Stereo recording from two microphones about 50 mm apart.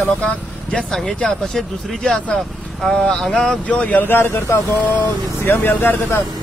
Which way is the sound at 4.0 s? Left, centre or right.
Left.